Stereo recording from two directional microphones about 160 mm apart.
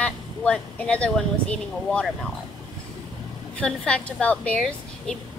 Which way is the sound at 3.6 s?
5° left (ahead or behind).